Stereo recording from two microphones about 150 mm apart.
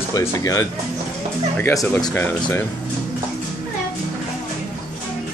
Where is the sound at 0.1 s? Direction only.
20° left (ahead or behind).